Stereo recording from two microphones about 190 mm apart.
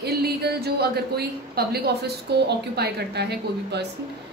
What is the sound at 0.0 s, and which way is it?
A woman's voice, 60° right (ahead or behind).